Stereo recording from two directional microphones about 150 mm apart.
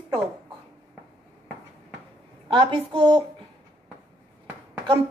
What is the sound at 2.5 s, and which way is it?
Speech, 35° right (ahead or behind).